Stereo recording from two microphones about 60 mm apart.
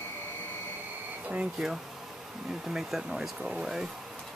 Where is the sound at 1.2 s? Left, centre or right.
Right.